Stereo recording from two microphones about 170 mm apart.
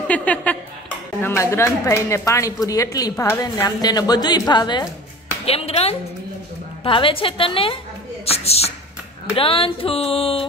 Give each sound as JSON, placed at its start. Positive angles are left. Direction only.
{"t": 0.1, "sound": "speech", "side_deg": 10}
{"t": 5.4, "sound": "speech", "side_deg": 35}